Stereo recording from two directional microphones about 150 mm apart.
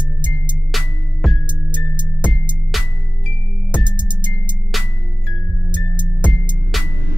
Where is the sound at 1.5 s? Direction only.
30° right (ahead or behind).